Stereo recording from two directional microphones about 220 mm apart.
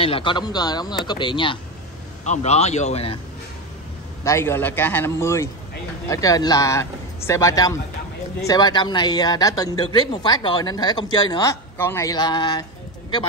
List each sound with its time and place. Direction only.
0.0 s speech: 25° left (ahead or behind)
4.2 s speech: 10° left (ahead or behind)